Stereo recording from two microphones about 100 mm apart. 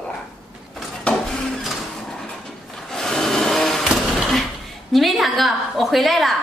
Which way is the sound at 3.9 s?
Centre (ahead or behind).